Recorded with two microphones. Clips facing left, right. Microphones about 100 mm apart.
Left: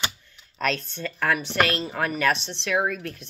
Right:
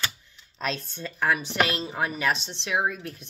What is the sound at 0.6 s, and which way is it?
Speech, 15° right (ahead or behind).